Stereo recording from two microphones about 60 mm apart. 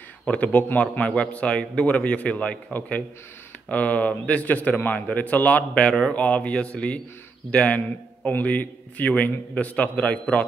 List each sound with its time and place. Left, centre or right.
0.2 s a man's voice: left